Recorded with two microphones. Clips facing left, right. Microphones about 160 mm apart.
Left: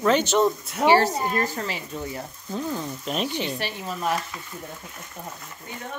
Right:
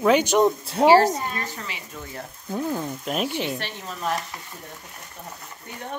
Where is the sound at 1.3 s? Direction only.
40° left (ahead or behind).